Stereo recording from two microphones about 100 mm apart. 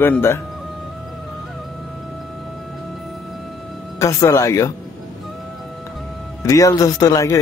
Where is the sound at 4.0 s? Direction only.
30° left (ahead or behind).